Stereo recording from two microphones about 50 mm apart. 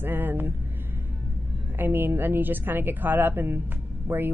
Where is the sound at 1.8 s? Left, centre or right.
Right.